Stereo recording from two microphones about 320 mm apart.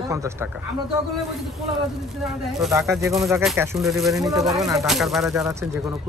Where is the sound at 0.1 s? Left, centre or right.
Centre.